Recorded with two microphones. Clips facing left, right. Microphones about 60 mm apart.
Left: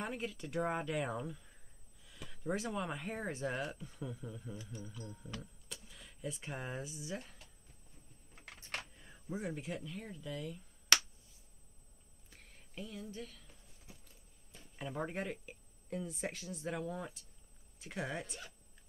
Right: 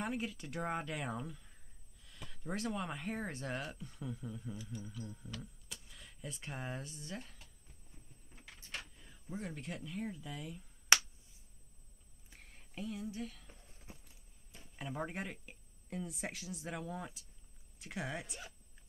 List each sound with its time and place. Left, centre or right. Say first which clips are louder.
0.0 s speech: right 1 dB; centre
5.0 s speech: even; centre
5.7 s speech: left 1 dB; centre
9.3 s speech: left 3 dB; centre
10.9 s finger snapping: right 2 dB; centre
12.3 s a sound: right 1 dB; centre
14.0 s speech: left 1 dB; centre